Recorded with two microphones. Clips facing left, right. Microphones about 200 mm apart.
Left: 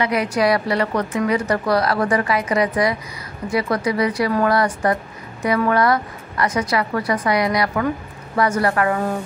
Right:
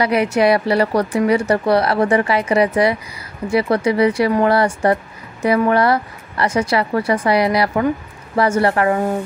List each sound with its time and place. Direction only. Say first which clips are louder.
0.0 s a woman's voice: right 4 dB; 30° right (ahead or behind)